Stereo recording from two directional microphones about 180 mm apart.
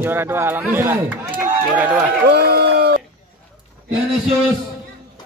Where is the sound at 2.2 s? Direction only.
65° right (ahead or behind).